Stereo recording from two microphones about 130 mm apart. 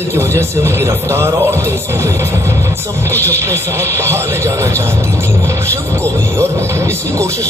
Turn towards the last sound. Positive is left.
turn(degrees=-25)  # may be behind; listen again after turning